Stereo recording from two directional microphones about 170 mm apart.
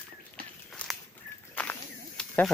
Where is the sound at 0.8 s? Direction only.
5° left (ahead or behind).